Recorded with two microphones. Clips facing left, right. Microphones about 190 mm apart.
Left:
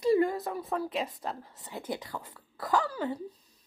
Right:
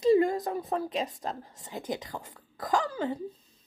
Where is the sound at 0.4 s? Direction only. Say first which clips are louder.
Right 2 dB; 40° right (ahead or behind).